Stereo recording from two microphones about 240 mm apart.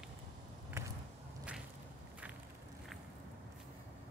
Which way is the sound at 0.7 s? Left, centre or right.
Centre.